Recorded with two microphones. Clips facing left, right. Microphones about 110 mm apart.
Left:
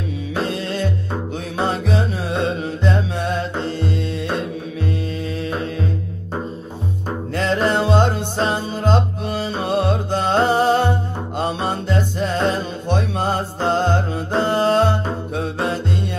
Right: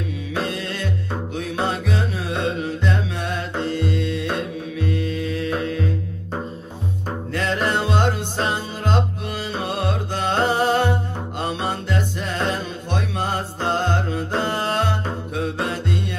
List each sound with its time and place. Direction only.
0.3 s music: 30° left (ahead or behind)
7.3 s music: 30° left (ahead or behind)